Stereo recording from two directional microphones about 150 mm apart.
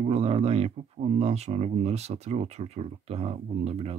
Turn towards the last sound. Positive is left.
turn(degrees=-45)  # may be behind; listen again after turning